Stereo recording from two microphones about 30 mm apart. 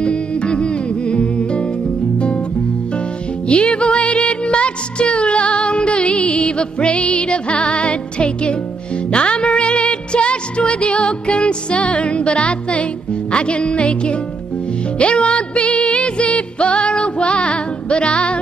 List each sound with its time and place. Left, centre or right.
0.0 s music: left
3.4 s music: left